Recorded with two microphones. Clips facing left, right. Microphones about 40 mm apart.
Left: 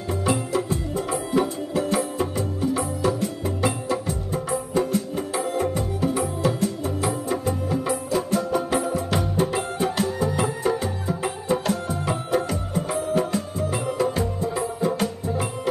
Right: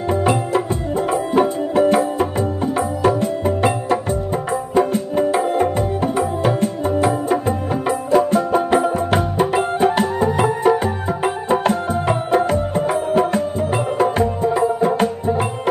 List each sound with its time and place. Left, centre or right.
0.1 s music: right